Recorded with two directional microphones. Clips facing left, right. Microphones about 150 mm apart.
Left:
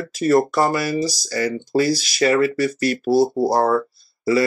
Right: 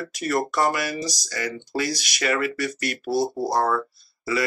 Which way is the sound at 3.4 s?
30° left (ahead or behind).